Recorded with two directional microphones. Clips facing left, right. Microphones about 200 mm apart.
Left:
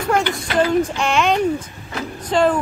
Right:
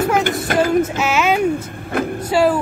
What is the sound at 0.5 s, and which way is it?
Child singing, 50° right (ahead or behind).